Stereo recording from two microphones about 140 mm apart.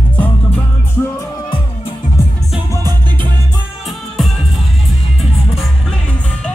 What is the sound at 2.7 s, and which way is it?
Music, 25° right (ahead or behind).